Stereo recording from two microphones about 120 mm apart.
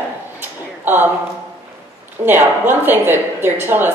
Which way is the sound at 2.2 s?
15° right (ahead or behind).